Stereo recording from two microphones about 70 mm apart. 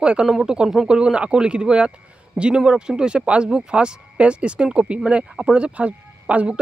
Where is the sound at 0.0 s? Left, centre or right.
Centre.